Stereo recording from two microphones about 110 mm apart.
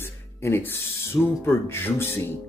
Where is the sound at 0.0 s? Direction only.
20° left (ahead or behind).